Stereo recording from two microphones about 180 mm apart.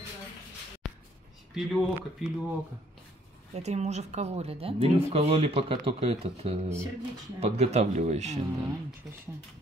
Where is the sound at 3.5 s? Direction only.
40° right (ahead or behind).